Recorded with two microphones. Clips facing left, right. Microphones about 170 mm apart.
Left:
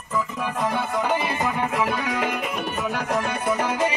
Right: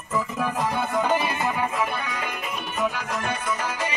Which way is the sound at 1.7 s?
85° left.